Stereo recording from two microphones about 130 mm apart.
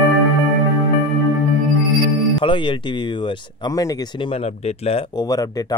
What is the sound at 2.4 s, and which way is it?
Music, 40° left (ahead or behind).